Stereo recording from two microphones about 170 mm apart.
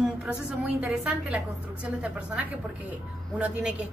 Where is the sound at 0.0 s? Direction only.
5° right (ahead or behind).